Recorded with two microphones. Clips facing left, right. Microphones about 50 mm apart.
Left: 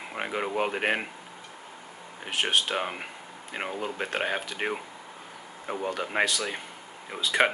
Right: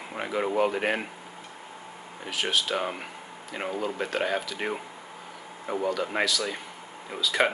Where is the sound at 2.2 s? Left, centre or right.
Left.